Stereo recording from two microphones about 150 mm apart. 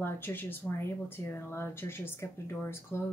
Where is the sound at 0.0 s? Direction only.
15° left (ahead or behind).